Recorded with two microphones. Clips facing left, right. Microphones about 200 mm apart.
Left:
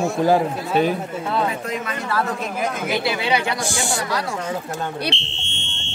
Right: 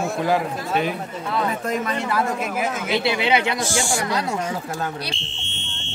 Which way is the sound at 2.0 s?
15° right (ahead or behind).